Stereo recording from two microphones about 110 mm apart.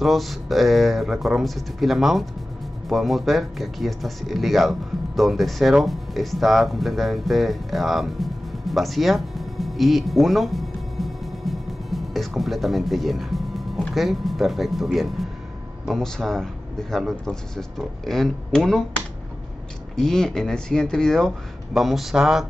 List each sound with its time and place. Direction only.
0.0 s speech: centre (ahead or behind)
20.0 s speech: 5° left (ahead or behind)